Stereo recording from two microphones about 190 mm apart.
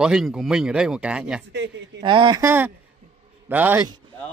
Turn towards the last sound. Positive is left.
turn(degrees=-10)  # may be behind; listen again after turning